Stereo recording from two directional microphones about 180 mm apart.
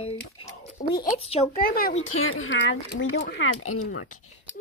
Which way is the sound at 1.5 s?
55° left (ahead or behind).